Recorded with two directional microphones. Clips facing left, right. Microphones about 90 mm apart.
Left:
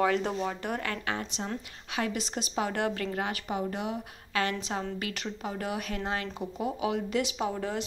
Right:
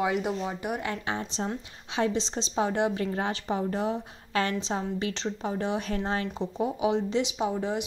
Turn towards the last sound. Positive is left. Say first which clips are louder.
# right 3 dB
turn(degrees=-20)  # may be behind; listen again after turning